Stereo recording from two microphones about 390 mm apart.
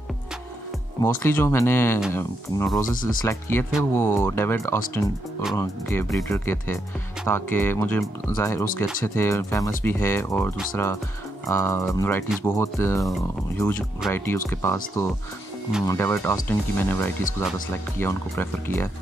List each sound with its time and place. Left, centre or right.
1.0 s speech: centre
15.8 s speech: centre